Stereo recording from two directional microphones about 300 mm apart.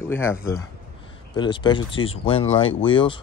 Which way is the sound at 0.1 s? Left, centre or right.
Centre.